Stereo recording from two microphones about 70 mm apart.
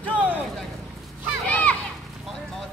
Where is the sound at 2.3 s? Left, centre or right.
Centre.